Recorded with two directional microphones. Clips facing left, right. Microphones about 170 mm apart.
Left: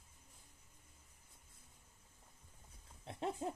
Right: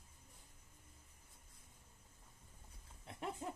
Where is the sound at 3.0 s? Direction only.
30° left (ahead or behind).